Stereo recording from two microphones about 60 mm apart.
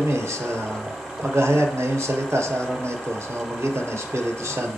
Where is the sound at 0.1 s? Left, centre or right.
Right.